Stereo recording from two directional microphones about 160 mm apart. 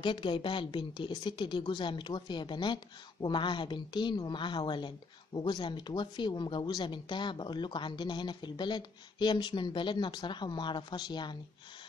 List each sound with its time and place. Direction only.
0.0 s a woman's voice: 30° left (ahead or behind)